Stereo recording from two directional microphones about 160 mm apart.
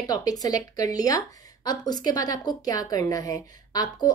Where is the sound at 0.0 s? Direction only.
25° left (ahead or behind).